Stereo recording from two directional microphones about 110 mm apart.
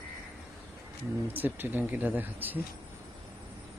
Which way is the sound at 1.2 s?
15° right (ahead or behind).